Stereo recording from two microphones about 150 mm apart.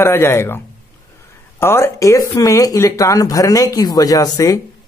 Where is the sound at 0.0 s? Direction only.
15° left (ahead or behind).